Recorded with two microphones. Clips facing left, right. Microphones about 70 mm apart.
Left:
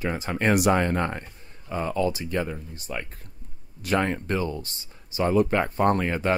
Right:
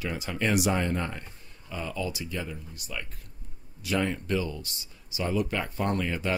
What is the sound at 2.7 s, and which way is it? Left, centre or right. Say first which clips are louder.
Speech: left 5 dB; left.